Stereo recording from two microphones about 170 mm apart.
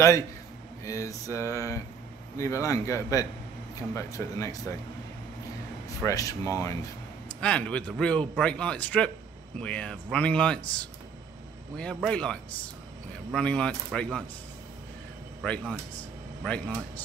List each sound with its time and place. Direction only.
0.8 s a sound: 20° left (ahead or behind)
3.9 s speech: 20° left (ahead or behind)
5.9 s speech: 20° left (ahead or behind)
7.3 s a man's voice: 5° left (ahead or behind)
9.6 s a sound: 5° left (ahead or behind)
10.1 s a man's voice: 5° left (ahead or behind)
11.7 s a man's voice: 5° left (ahead or behind)
15.4 s a sound: 5° left (ahead or behind)
16.4 s a man's voice: 5° left (ahead or behind)